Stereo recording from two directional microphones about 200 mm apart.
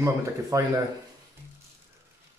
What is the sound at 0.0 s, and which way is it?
Speech, 15° right (ahead or behind).